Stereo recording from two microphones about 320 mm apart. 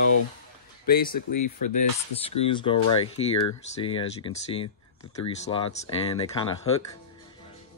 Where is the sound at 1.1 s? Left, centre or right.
Left.